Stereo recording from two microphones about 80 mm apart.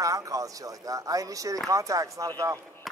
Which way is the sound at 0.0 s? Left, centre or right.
Right.